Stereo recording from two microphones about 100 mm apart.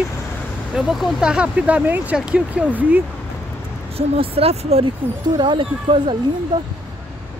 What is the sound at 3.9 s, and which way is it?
Speech, 80° right.